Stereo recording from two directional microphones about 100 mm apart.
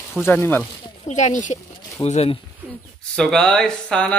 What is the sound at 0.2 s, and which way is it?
Speech, 20° left (ahead or behind).